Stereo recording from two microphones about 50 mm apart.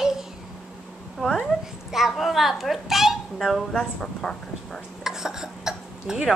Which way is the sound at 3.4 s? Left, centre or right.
Centre.